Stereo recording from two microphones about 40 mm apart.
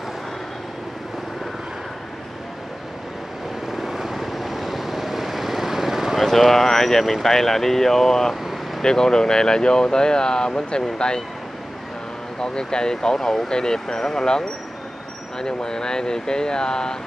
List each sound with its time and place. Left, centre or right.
3.7 s vehicle: centre
6.2 s speech: centre
12.4 s speech: centre